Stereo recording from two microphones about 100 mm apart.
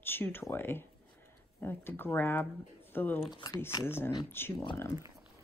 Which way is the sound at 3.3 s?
40° left (ahead or behind).